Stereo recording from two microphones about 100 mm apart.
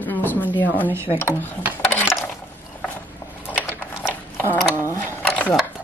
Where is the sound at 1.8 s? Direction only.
15° left (ahead or behind).